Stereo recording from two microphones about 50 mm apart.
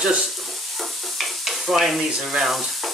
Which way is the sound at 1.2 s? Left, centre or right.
Centre.